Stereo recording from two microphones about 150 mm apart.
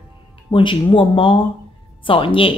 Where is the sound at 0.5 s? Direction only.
35° left (ahead or behind).